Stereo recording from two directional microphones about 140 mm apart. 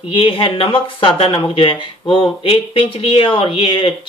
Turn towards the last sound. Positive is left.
turn(degrees=35)  # may be behind; listen again after turning